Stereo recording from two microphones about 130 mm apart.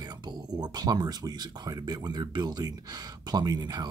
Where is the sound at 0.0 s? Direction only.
35° right (ahead or behind).